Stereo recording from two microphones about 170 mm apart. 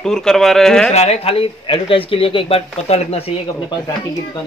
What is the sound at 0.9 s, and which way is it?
Speech, 40° left (ahead or behind).